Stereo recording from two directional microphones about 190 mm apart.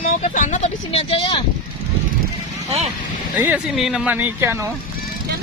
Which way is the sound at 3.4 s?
5° right (ahead or behind).